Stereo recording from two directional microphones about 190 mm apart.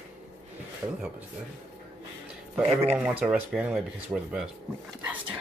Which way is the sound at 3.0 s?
5° right (ahead or behind).